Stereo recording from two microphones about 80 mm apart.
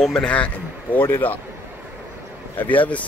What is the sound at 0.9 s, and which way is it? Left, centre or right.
Speech, left.